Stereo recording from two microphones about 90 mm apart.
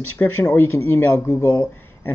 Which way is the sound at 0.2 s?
20° left (ahead or behind).